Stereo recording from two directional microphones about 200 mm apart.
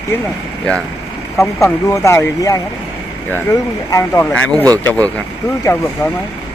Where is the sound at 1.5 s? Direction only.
15° left (ahead or behind).